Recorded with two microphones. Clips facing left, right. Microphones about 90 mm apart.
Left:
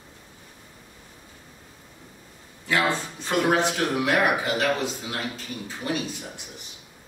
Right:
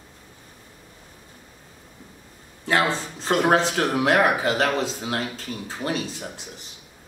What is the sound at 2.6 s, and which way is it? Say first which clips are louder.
Speech: right 2 dB; 35° right (ahead or behind).